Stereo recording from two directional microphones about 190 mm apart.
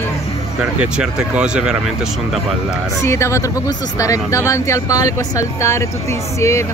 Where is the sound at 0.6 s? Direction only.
5° right (ahead or behind).